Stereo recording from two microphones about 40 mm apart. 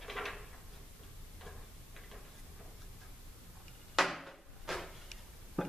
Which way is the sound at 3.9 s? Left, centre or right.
Centre.